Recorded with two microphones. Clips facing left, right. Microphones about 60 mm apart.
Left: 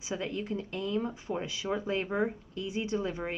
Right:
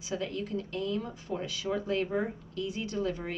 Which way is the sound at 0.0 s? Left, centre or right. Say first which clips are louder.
Even; left.